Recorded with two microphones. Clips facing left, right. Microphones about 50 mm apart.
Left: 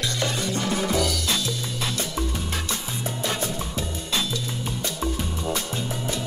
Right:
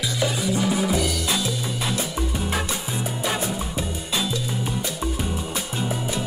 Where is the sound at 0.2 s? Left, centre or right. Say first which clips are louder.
Right 5 dB; centre.